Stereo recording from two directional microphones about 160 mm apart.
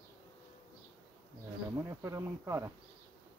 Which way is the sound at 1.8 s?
15° right (ahead or behind).